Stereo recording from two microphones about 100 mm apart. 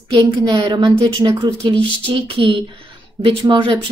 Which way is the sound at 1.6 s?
65° right (ahead or behind).